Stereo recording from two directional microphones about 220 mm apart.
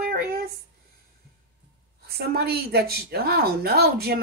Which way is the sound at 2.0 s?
45° right (ahead or behind).